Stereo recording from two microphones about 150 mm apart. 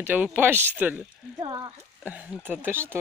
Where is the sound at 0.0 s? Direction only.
10° right (ahead or behind).